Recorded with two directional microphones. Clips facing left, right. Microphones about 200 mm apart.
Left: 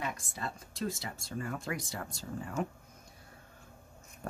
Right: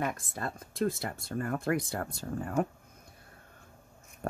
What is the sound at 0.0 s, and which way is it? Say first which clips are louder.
Speech: right 4 dB; 50° right (ahead or behind).